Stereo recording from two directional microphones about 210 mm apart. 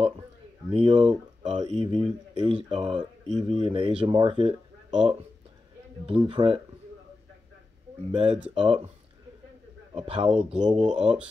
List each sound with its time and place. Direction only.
0.7 s speech: 25° right (ahead or behind)
6.2 s speech: 25° right (ahead or behind)
8.1 s speech: 20° right (ahead or behind)
9.9 s speech: 30° right (ahead or behind)